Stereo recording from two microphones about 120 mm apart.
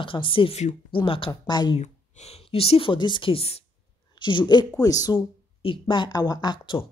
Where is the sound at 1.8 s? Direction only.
65° left (ahead or behind).